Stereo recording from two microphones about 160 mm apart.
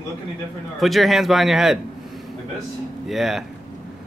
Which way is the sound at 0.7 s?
Centre (ahead or behind).